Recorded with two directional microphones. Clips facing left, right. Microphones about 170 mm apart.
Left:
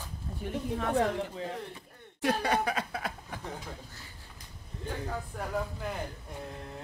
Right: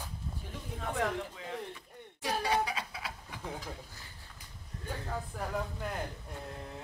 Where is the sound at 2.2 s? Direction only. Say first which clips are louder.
Left 3 dB; 60° left (ahead or behind).